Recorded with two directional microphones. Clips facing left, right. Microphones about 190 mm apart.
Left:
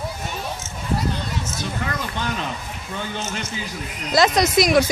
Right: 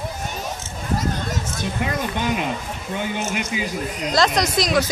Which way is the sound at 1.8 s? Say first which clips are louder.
Right 5 dB; 15° right (ahead or behind).